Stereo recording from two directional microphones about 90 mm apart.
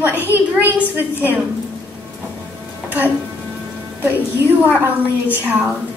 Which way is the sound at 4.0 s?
20° right (ahead or behind).